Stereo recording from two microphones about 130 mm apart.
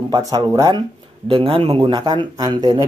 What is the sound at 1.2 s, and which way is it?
A man's voice, 45° right (ahead or behind).